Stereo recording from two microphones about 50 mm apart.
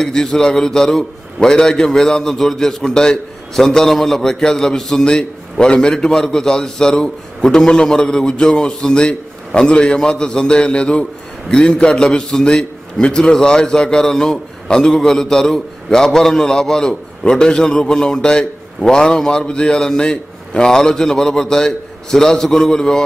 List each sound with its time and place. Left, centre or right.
0.0 s a man's voice: centre